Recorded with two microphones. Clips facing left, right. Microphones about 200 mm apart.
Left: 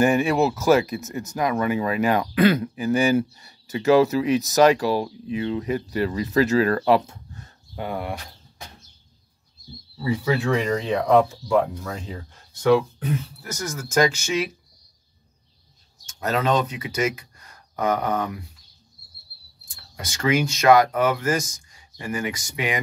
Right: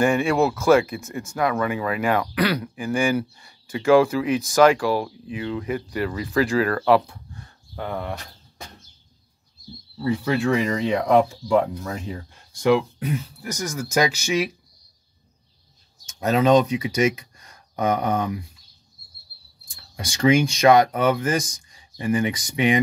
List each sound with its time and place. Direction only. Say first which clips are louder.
0.0 s speech: even; 20° left (ahead or behind)
7.4 s a sound: left 1 dB; 15° left (ahead or behind)
9.9 s speech: right 1 dB; 5° left (ahead or behind)
11.4 s speech: right 1 dB; 15° right (ahead or behind)
16.2 s speech: right 5 dB; 20° right (ahead or behind)
19.7 s speech: right 2 dB; 15° right (ahead or behind)